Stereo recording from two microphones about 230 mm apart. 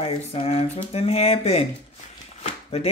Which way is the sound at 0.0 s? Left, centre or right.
Left.